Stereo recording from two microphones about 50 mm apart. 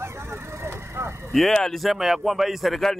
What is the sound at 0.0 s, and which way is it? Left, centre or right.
Vehicle, right.